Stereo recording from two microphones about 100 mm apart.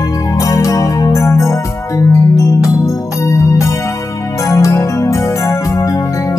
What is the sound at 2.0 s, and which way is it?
Music, 35° left (ahead or behind).